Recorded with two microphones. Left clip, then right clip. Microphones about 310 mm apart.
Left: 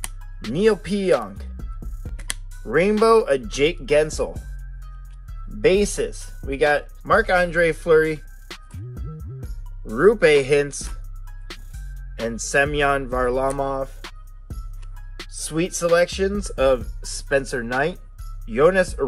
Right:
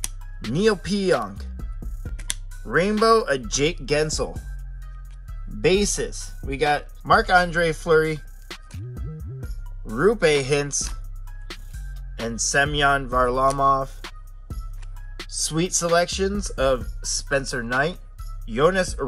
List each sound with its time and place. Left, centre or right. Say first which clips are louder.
0.4 s speech: left 1 dB; centre
0.8 s speech: left 1 dB; centre
1.8 s music: even; centre
2.5 s speech: left 3 dB; centre
4.3 s speech: left 2 dB; centre
5.6 s speech: left 2 dB; centre
8.2 s music: even; centre
11.4 s speech: even; centre
14.0 s music: even; centre
15.3 s speech: right 1 dB; centre